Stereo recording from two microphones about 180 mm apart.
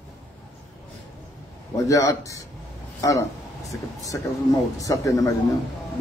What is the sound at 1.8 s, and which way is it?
Speech, 20° left (ahead or behind).